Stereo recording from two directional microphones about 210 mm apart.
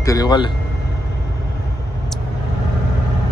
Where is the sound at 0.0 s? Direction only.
15° left (ahead or behind).